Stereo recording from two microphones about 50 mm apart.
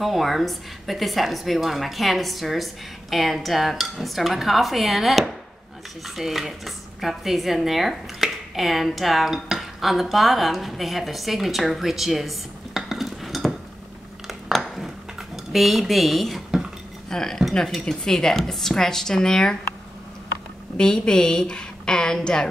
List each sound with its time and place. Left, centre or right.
0.0 s speech: centre
14.6 s dishes: centre
17.1 s speech: centre
20.7 s speech: centre